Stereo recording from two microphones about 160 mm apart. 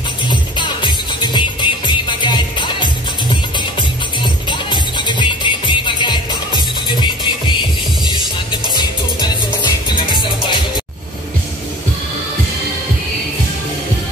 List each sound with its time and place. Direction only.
0.3 s music: 30° left (ahead or behind)
4.2 s music: 30° left (ahead or behind)